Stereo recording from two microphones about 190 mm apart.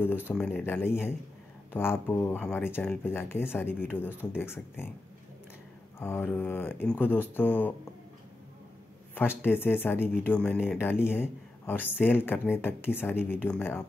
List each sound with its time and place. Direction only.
0.0 s speech: 10° left (ahead or behind)
5.9 s speech: 10° left (ahead or behind)
9.1 s speech: 10° left (ahead or behind)